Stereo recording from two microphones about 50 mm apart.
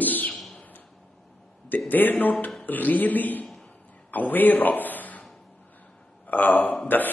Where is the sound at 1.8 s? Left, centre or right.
Left.